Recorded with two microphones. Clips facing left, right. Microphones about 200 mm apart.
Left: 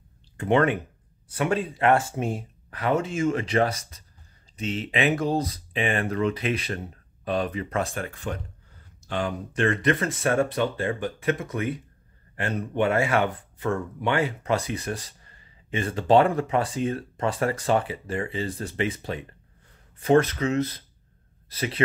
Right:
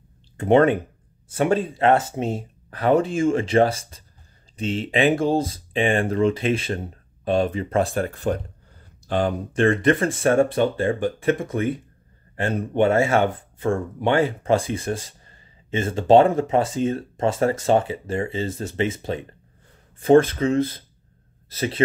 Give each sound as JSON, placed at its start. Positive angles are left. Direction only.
{"t": 0.5, "sound": "speech", "side_deg": -40}
{"t": 12.7, "sound": "speech", "side_deg": -25}